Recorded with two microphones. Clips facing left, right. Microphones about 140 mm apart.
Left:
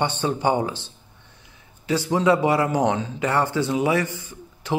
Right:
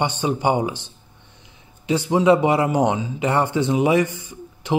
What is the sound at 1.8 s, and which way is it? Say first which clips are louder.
A man's voice: right 3 dB; 20° right (ahead or behind).